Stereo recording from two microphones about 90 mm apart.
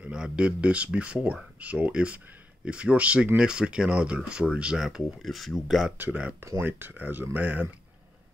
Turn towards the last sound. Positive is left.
turn(degrees=-15)  # may be behind; listen again after turning